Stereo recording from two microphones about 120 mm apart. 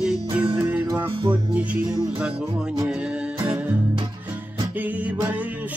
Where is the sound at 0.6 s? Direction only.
15° right (ahead or behind).